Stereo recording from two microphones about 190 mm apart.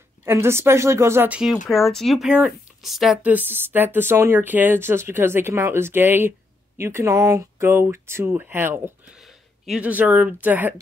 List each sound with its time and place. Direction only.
0.2 s speech: 15° right (ahead or behind)